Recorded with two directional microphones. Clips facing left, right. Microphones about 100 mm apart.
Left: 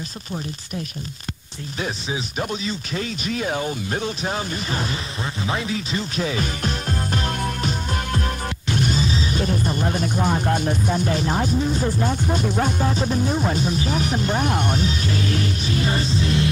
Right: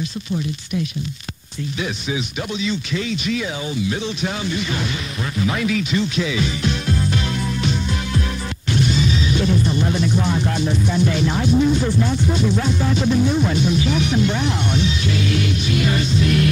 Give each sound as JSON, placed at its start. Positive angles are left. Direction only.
{"t": 2.6, "sound": "speech", "side_deg": 40}
{"t": 5.4, "sound": "speech", "side_deg": 30}
{"t": 8.8, "sound": "music", "side_deg": 40}
{"t": 12.0, "sound": "speech", "side_deg": 45}